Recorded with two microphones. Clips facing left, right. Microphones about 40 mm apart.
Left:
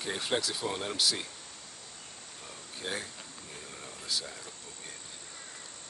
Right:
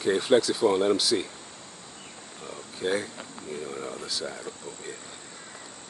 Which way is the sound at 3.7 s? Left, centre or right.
Right.